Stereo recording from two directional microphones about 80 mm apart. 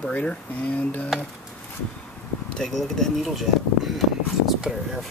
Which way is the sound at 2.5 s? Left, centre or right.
Centre.